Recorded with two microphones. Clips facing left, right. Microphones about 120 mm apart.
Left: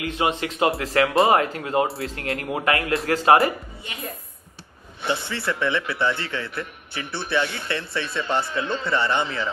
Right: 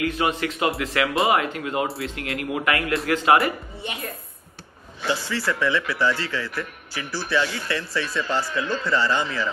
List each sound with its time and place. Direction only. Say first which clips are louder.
0.0 s speech: right 1 dB; 30° left (ahead or behind)
5.0 s speech: right 1 dB; 25° left (ahead or behind)